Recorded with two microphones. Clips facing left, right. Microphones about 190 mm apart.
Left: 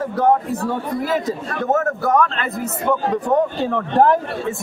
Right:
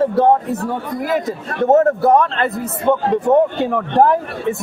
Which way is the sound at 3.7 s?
5° right (ahead or behind).